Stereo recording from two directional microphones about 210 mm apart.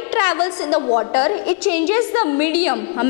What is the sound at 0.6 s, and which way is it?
Speech, 30° left (ahead or behind).